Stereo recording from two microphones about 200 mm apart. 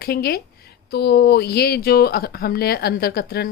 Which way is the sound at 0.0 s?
50° left (ahead or behind).